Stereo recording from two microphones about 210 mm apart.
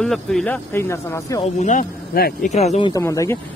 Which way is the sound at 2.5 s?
30° left (ahead or behind).